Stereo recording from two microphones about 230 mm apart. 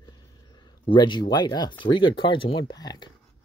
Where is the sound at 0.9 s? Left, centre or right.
Centre.